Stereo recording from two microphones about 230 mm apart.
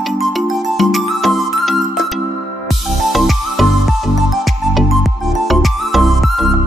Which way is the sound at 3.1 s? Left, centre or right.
Centre.